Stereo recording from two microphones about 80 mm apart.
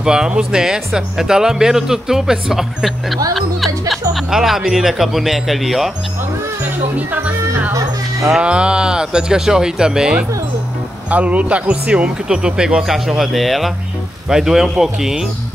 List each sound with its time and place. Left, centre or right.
0.0 s speech: centre
7.0 s speech: centre
8.4 s speech: centre